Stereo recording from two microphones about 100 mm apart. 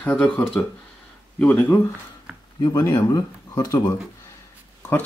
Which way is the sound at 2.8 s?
35° left (ahead or behind).